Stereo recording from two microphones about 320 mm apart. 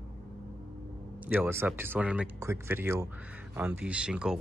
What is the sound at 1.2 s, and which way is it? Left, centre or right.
A man's voice, centre.